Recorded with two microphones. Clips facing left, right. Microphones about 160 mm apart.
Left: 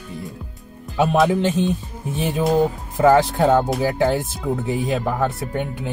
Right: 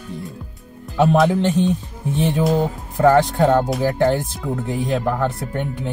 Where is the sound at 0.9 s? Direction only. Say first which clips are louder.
Right 1 dB; centre (ahead or behind).